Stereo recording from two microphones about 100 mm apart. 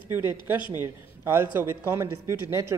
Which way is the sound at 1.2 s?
25° right (ahead or behind).